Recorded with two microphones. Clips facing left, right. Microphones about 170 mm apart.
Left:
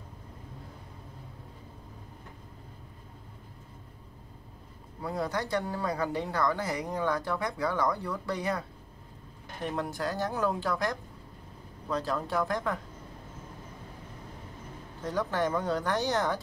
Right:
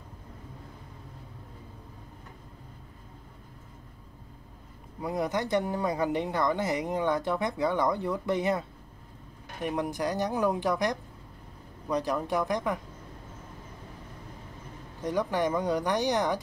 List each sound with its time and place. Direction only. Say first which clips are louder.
5.0 s speech: right 3 dB; 20° right (ahead or behind)
15.0 s speech: right 2 dB; 15° right (ahead or behind)